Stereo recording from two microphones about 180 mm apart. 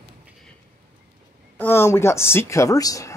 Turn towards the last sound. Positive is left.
turn(degrees=20)  # may be behind; listen again after turning